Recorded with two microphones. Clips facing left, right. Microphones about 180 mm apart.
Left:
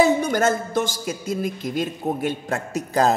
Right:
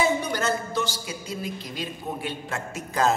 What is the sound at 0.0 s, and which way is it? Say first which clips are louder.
A man's voice: left 7 dB; 45° left (ahead or behind).